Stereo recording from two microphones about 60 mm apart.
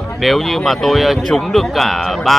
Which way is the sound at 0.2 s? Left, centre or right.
Centre.